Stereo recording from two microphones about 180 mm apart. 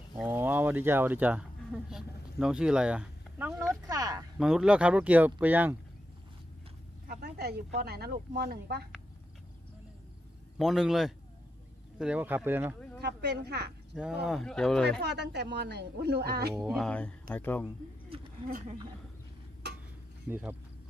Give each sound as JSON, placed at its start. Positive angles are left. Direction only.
{"t": 0.2, "sound": "a sound", "side_deg": -10}
{"t": 4.4, "sound": "speech", "side_deg": -5}
{"t": 7.1, "sound": "speech", "side_deg": -65}
{"t": 10.6, "sound": "speech", "side_deg": 0}
{"t": 13.0, "sound": "speech", "side_deg": -65}
{"t": 13.9, "sound": "speech", "side_deg": -5}
{"t": 15.0, "sound": "speech", "side_deg": -70}
{"t": 16.6, "sound": "speech", "side_deg": 0}
{"t": 20.2, "sound": "speech", "side_deg": -10}